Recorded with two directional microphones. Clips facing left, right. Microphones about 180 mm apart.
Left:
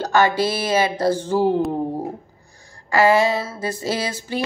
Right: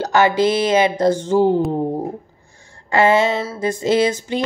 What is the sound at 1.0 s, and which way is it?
Speech, 10° left (ahead or behind).